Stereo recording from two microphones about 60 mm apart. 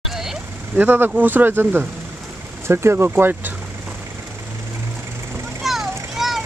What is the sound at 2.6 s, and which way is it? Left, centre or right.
Speech, right.